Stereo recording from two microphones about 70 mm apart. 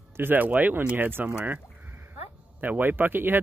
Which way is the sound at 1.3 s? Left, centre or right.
Right.